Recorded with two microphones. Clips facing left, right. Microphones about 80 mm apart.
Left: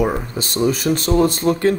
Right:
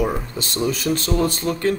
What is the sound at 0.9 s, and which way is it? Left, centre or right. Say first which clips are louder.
Speech: left 4 dB; left.